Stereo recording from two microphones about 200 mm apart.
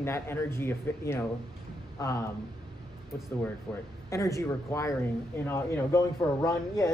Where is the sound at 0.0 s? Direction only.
10° left (ahead or behind).